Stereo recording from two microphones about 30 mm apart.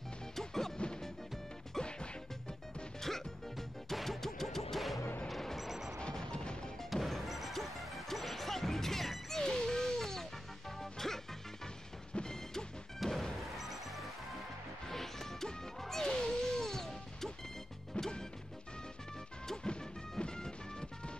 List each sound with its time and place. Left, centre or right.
0.4 s music: centre
1.8 s music: left
3.0 s music: centre
5.6 s music: centre
6.3 s music: left
6.9 s music: centre
9.4 s a sound: centre
10.8 s music: centre
12.1 s music: left
13.0 s smash: centre
13.6 s music: centre
14.9 s music: centre
17.9 s music: left
19.4 s music: left